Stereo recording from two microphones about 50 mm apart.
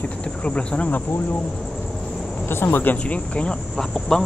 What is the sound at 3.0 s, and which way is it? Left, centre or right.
Speech, left.